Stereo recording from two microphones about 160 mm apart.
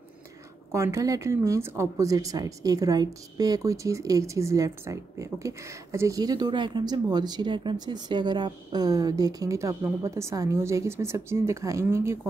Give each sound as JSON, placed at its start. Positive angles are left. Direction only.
{"t": 0.7, "sound": "speech", "side_deg": -20}